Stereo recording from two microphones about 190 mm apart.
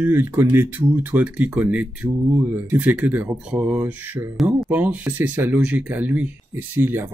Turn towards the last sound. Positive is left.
turn(degrees=-10)  # may be behind; listen again after turning